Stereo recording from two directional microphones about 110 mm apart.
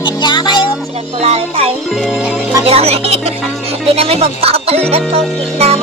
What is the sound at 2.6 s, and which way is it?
Speech, 65° right (ahead or behind).